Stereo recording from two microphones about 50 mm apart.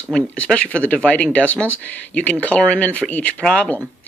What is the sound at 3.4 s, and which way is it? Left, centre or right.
Speech, centre.